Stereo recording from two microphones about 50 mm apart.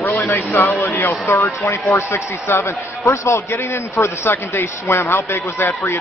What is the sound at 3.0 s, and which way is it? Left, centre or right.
A man's voice, left.